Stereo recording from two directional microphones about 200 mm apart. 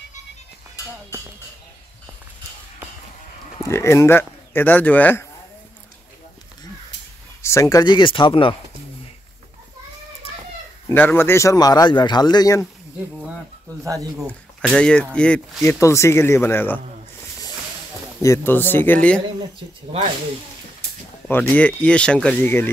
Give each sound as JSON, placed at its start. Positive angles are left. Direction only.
{"t": 3.6, "sound": "speech", "side_deg": 15}
{"t": 7.4, "sound": "a man's voice", "side_deg": 15}
{"t": 10.9, "sound": "a man's voice", "side_deg": 10}
{"t": 13.8, "sound": "speech", "side_deg": -15}
{"t": 14.7, "sound": "speech", "side_deg": 5}
{"t": 18.2, "sound": "speech", "side_deg": 15}
{"t": 21.3, "sound": "speech", "side_deg": 10}